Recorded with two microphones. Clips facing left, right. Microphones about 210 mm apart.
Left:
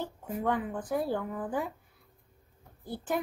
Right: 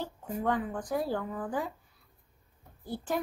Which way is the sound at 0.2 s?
5° left (ahead or behind).